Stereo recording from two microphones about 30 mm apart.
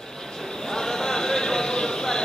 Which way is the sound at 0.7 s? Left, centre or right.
Centre.